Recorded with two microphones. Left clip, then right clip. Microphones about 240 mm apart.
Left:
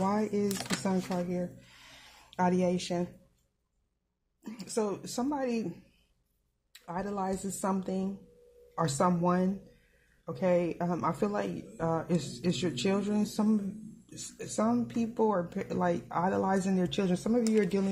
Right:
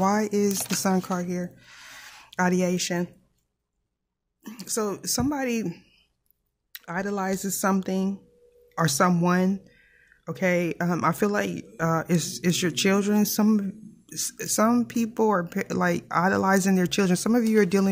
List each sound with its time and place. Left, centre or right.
0.0 s speech: right
4.4 s speech: centre; by 17.8 s right